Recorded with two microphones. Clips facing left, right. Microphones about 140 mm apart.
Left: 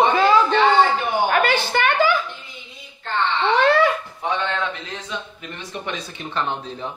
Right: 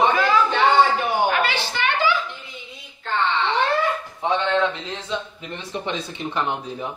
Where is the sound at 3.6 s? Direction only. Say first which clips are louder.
Left 7 dB; 80° left.